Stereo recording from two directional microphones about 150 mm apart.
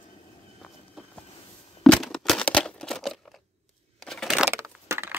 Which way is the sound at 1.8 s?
Centre (ahead or behind).